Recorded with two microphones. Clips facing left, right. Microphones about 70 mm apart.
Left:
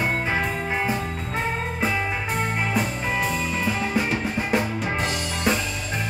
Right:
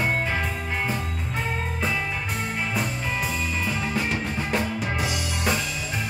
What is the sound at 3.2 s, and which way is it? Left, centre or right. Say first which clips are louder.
Music: left 4 dB; centre.